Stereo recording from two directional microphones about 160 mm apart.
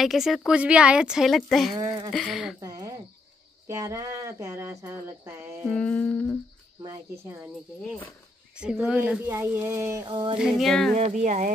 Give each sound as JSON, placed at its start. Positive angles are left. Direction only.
{"t": 0.0, "sound": "speech", "side_deg": 0}
{"t": 2.6, "sound": "speech", "side_deg": -20}
{"t": 5.7, "sound": "humming", "side_deg": 10}
{"t": 8.5, "sound": "speech", "side_deg": -5}
{"t": 10.3, "sound": "speech", "side_deg": -5}
{"t": 11.0, "sound": "speech", "side_deg": -45}